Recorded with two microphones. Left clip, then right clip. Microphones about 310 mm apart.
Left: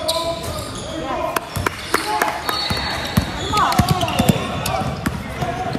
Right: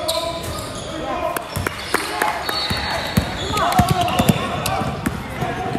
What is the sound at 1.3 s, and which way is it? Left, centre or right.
Music, centre.